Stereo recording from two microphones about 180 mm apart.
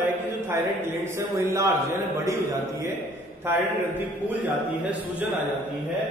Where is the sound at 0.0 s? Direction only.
10° right (ahead or behind).